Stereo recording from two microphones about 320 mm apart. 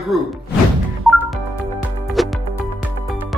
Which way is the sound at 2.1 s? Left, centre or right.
Centre.